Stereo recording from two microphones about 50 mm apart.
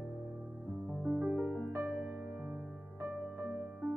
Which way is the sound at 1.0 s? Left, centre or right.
Right.